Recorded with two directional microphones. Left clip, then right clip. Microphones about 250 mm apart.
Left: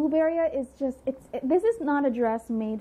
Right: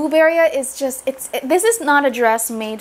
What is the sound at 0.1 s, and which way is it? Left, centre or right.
Speech, centre.